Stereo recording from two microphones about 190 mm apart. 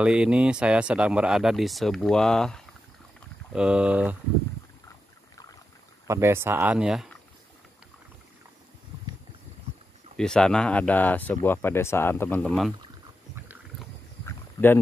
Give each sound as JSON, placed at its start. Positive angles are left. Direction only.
{"t": 0.0, "sound": "speech", "side_deg": -5}
{"t": 6.0, "sound": "speech", "side_deg": -15}
{"t": 10.1, "sound": "speech", "side_deg": 5}
{"t": 14.2, "sound": "a sound", "side_deg": 10}